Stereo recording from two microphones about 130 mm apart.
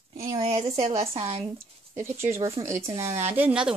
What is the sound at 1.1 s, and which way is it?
Speech, 50° right (ahead or behind).